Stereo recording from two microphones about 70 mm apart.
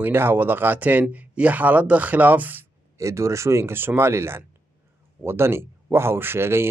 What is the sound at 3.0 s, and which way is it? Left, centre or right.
Speech, right.